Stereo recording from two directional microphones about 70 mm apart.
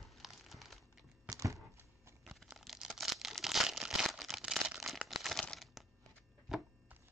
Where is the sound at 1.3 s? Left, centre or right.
Right.